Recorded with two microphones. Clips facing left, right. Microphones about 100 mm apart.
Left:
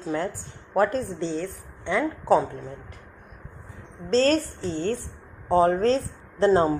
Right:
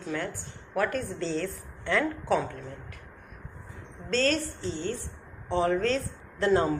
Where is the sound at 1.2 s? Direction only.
15° left (ahead or behind).